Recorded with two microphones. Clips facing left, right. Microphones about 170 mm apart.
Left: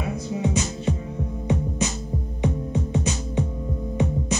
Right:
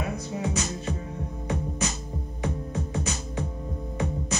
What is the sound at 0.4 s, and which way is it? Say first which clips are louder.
Music: left 4 dB; 20° left (ahead or behind).